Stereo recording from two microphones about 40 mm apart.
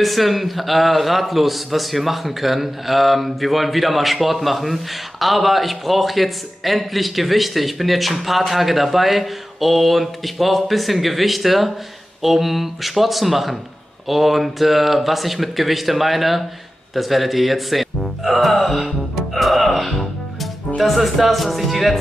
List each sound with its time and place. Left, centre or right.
0.0 s a man's voice: centre